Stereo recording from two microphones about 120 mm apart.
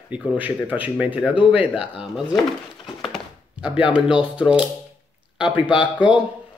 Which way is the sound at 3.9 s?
10° right (ahead or behind).